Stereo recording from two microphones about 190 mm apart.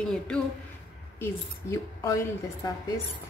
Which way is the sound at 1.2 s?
15° left (ahead or behind).